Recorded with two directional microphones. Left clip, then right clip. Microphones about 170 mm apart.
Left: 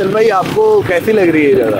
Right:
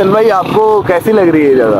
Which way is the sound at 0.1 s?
10° left (ahead or behind).